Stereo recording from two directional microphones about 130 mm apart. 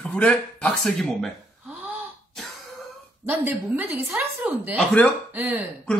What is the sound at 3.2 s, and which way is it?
A woman's voice, 15° right (ahead or behind).